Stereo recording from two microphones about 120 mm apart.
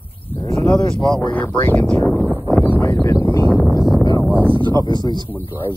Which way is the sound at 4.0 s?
30° left (ahead or behind).